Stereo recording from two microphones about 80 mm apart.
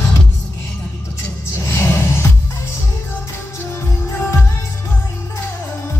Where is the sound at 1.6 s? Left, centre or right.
Left.